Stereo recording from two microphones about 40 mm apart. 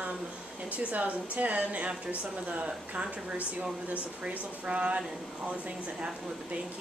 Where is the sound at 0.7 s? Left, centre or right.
Right.